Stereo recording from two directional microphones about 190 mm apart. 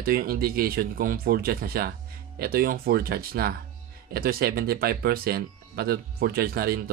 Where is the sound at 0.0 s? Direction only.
50° right (ahead or behind).